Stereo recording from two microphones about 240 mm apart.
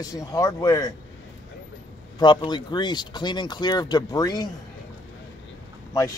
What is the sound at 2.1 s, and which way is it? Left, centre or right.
A man's voice, centre.